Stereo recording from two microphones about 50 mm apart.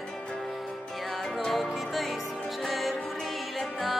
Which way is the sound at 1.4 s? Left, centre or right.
Centre.